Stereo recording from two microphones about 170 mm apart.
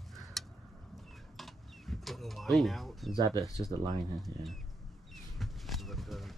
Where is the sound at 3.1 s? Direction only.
20° right (ahead or behind).